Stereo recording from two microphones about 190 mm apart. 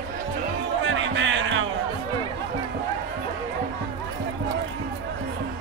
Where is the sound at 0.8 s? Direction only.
75° right (ahead or behind).